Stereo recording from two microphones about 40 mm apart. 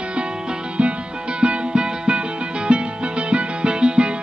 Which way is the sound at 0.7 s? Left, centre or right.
Right.